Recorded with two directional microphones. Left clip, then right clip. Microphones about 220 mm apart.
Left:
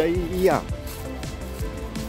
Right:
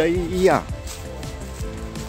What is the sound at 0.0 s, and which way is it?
Speech, 15° right (ahead or behind).